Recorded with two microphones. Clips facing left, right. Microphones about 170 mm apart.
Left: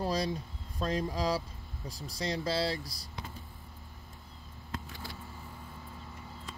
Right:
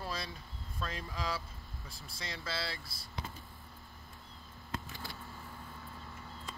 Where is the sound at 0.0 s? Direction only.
40° left (ahead or behind).